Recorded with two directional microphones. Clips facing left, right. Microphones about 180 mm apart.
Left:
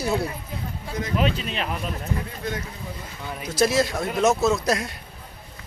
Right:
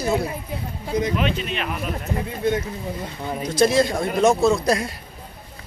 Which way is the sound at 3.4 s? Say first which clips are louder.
Right 3 dB; 5° left (ahead or behind).